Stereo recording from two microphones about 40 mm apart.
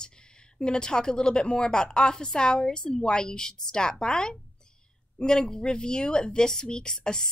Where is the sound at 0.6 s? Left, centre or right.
Left.